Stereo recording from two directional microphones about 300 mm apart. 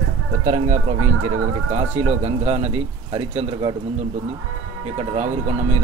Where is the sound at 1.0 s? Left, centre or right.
Right.